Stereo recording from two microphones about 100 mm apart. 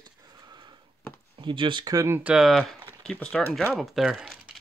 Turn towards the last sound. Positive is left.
turn(degrees=-10)  # may be behind; listen again after turning